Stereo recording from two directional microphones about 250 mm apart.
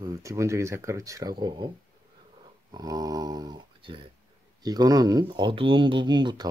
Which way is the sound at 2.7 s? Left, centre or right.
Centre.